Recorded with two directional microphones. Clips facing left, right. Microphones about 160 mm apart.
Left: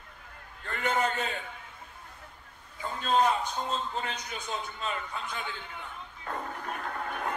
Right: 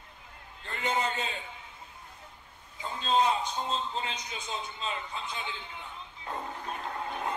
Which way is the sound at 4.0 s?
50° left (ahead or behind).